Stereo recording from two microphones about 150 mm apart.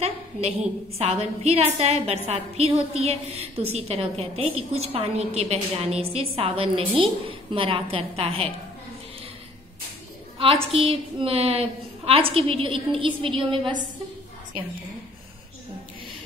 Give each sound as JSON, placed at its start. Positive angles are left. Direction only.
{"t": 0.0, "sound": "a woman's voice", "side_deg": -45}
{"t": 10.4, "sound": "a woman's voice", "side_deg": -40}